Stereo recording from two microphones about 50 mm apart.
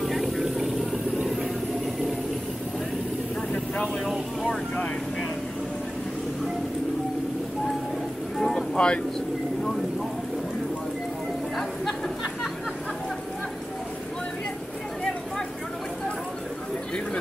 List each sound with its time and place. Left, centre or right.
0.0 s vehicle: centre
3.8 s speech: centre
8.4 s a sound: centre
8.7 s speech: left